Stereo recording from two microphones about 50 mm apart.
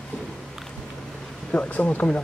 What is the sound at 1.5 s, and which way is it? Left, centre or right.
Speech, left.